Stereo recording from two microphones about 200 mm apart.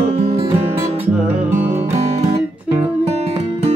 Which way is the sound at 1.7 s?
30° right (ahead or behind).